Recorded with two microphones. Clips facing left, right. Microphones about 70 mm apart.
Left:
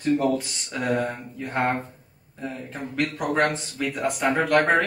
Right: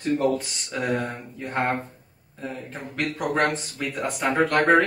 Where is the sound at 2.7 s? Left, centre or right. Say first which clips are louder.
Left 3 dB; centre.